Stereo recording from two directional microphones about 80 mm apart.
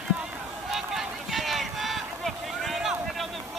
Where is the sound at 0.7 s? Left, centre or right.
Centre.